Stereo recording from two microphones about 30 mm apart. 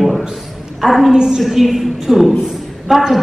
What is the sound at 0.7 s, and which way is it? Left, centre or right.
Speech, centre.